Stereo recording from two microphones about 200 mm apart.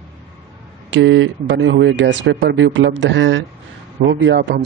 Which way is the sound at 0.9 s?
70° right (ahead or behind).